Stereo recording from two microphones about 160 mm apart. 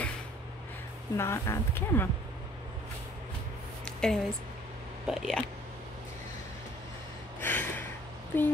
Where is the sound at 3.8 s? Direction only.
5° left (ahead or behind).